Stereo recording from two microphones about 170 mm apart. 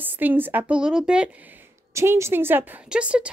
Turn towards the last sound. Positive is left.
turn(degrees=-5)  # may be behind; listen again after turning